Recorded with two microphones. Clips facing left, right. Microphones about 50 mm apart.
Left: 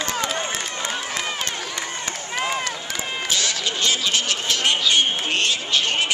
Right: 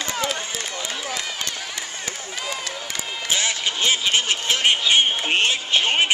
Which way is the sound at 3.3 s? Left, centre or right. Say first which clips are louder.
Right 2 dB; right.